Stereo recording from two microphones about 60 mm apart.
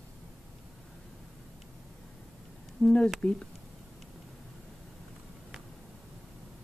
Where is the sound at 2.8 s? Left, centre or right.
Centre.